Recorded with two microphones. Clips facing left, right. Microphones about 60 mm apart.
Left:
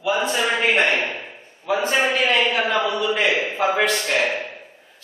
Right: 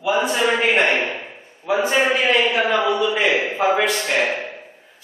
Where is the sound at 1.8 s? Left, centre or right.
Centre.